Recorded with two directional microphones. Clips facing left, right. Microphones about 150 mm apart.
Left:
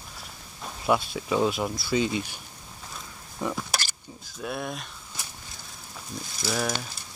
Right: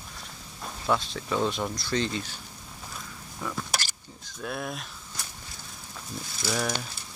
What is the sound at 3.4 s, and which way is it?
Speech, 20° left (ahead or behind).